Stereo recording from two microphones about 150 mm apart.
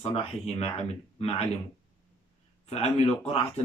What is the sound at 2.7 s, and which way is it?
Speech, 45° left (ahead or behind).